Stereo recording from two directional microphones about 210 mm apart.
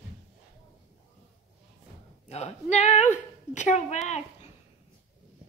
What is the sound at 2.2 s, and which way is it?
A woman's voice, 30° left (ahead or behind).